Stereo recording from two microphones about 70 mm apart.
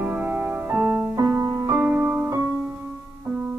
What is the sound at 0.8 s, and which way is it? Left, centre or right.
Music, right.